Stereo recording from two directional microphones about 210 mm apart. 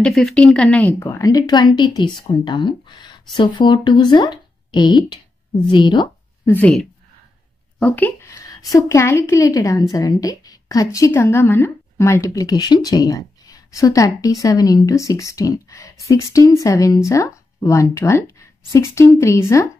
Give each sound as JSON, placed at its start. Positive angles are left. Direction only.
{"t": 0.0, "sound": "speech", "side_deg": 0}
{"t": 6.5, "sound": "a woman's voice", "side_deg": 5}